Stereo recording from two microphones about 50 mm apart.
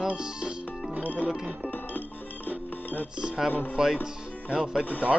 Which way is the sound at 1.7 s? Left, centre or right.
Left.